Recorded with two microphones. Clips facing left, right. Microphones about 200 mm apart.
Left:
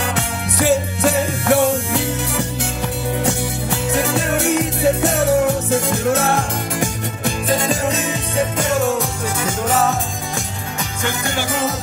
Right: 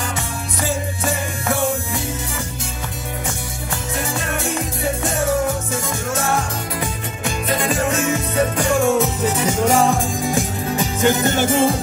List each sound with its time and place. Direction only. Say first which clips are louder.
0.1 s music: left 4 dB; 70° left (ahead or behind)
7.2 s music: left 2 dB; 35° left (ahead or behind)
8.0 s music: right 2 dB; 15° left (ahead or behind)
8.8 s music: right 3 dB; centre (ahead or behind)
11.3 s music: right 5 dB; 25° right (ahead or behind)